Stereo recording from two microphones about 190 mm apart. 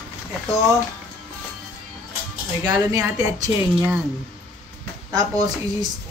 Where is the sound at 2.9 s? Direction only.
20° right (ahead or behind).